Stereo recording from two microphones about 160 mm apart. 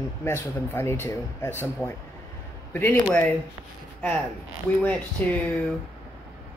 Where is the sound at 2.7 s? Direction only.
10° left (ahead or behind).